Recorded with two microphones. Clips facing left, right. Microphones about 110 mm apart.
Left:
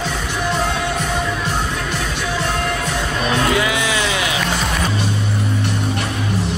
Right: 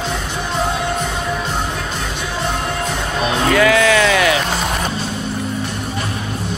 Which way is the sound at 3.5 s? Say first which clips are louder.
Right 6 dB; 20° left (ahead or behind).